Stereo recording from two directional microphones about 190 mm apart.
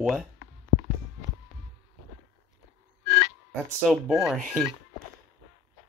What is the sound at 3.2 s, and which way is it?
Speech, centre (ahead or behind).